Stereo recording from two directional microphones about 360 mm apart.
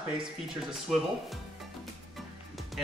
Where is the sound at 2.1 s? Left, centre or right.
Centre.